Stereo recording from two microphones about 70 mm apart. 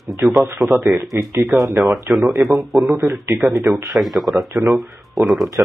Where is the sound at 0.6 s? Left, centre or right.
Centre.